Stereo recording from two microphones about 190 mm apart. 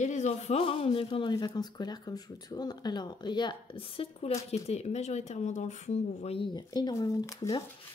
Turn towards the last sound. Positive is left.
turn(degrees=15)  # may be behind; listen again after turning